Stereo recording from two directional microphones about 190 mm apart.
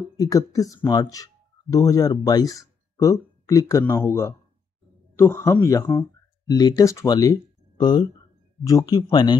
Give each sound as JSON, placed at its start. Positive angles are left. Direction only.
{"t": 0.2, "sound": "speech", "side_deg": 20}